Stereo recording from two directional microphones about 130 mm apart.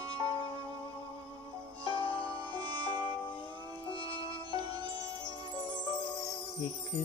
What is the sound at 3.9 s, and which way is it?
Sitar, 40° left (ahead or behind).